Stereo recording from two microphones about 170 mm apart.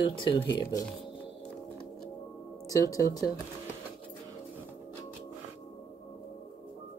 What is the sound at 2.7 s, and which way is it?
Speech, 20° left (ahead or behind).